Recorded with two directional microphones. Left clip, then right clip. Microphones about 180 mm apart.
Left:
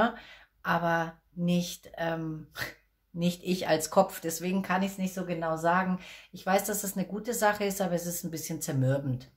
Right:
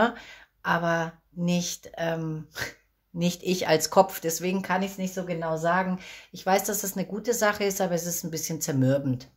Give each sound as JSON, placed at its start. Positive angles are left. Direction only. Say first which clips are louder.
{"t": 0.7, "sound": "speech", "louder": "right 2 dB", "side_deg": -35}